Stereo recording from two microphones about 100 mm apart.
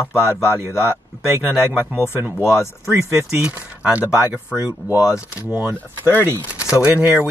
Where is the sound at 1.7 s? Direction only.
10° right (ahead or behind).